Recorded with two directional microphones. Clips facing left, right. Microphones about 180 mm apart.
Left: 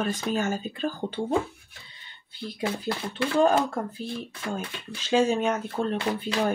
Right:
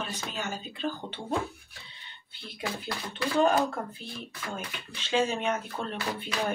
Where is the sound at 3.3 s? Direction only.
35° left (ahead or behind).